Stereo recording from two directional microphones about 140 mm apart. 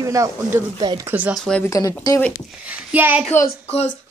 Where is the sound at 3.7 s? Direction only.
50° left (ahead or behind).